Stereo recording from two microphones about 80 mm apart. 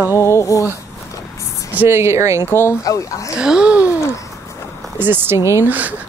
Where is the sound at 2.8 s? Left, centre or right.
Left.